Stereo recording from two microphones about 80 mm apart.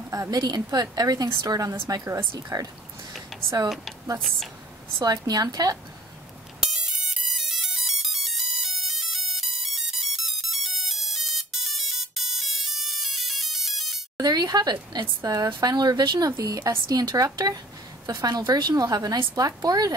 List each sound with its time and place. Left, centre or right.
0.1 s a woman's voice: right
3.6 s speech: centre
5.0 s a woman's voice: right
6.6 s ringtone: centre
14.1 s speech: right
15.2 s a woman's voice: right